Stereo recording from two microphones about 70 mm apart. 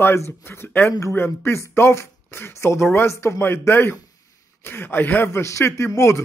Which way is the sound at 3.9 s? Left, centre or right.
Left.